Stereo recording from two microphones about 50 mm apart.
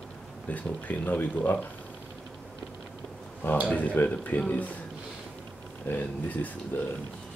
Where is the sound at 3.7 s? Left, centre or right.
Left.